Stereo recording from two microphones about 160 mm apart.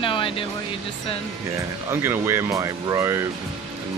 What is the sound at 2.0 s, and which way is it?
Speech, 15° right (ahead or behind).